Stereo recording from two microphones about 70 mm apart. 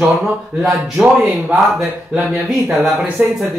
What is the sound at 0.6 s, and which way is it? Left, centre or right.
Speech, centre.